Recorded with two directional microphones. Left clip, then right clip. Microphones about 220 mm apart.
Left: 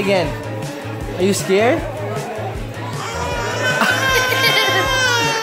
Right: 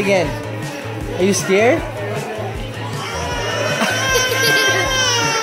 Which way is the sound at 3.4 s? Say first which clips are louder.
Left 1 dB; 5° left (ahead or behind).